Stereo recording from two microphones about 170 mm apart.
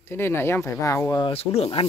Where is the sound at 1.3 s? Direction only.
35° left (ahead or behind).